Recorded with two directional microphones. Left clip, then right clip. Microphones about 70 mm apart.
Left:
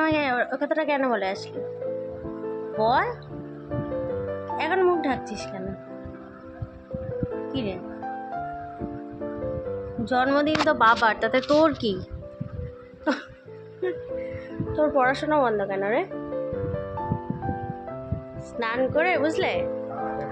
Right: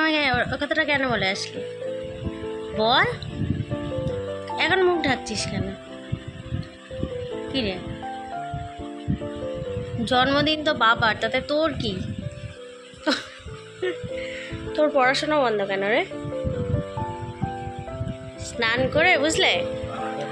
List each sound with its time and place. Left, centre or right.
0.0 s a sound: centre
0.5 s a woman's voice: centre
2.2 s music: centre
4.6 s a woman's voice: centre
7.5 s a woman's voice: centre
9.2 s music: centre
10.0 s a woman's voice: centre
10.8 s a woman's voice: centre
11.1 s speech: left
11.5 s speech: left
13.1 s a woman's voice: centre
14.7 s speech: centre
15.0 s music: centre
18.6 s a woman's voice: centre